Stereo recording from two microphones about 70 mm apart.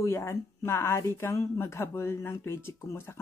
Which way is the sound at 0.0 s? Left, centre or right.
Left.